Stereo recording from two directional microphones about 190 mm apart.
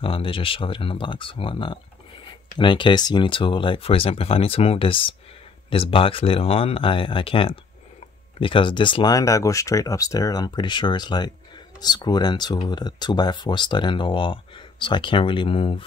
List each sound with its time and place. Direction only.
0.0 s speech: 30° left (ahead or behind)